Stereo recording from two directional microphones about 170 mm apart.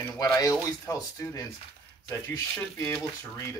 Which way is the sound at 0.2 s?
20° left (ahead or behind).